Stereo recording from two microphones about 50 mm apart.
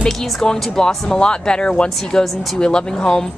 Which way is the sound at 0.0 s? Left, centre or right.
Centre.